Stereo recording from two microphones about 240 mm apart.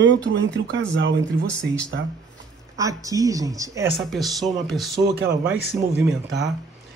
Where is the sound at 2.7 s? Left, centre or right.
Centre.